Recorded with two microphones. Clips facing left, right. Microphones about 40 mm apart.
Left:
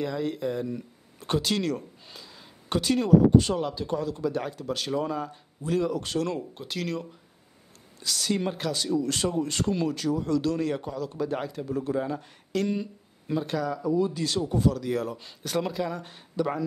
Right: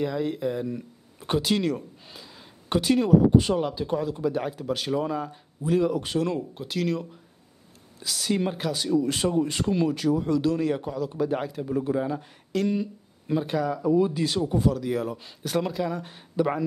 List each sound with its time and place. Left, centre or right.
0.0 s speech: centre
16.3 s speech: centre